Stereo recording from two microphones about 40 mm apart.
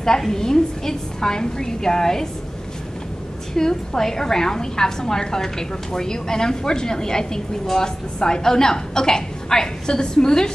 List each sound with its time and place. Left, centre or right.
0.0 s a woman's voice: centre
3.5 s a woman's voice: centre